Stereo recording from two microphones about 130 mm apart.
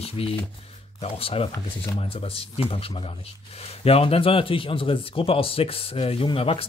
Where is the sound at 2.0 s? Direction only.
45° left (ahead or behind).